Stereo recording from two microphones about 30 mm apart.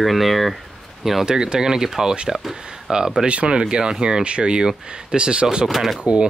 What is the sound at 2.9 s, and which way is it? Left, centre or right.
Speech, right.